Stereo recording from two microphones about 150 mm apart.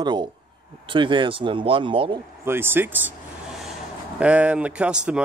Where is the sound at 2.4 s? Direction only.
15° right (ahead or behind).